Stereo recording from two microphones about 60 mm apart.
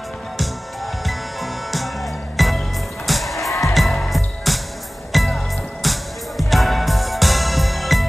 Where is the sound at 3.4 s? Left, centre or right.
Left.